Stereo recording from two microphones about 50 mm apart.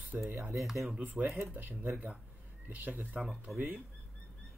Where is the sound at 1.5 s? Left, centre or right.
Right.